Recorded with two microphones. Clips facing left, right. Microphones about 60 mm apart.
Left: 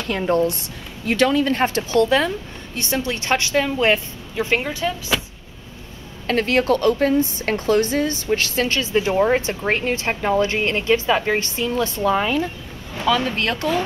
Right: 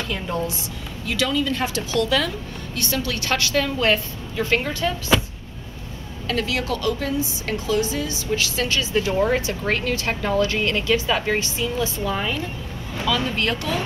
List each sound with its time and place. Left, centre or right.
0.1 s a woman's voice: left
1.0 s a woman's voice: left; by 5.2 s centre
6.2 s a woman's voice: left
8.9 s a woman's voice: left
11.3 s a woman's voice: left